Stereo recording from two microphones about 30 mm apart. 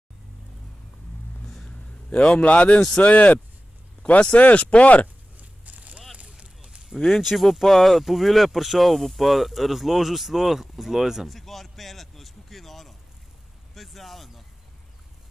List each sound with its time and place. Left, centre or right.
1.8 s a man's voice: left
4.0 s speech: left
4.4 s speech: left
5.4 s a sound: right
6.2 s vehicle: right
7.1 s speech: centre
11.2 s a sound: centre
13.7 s speech: centre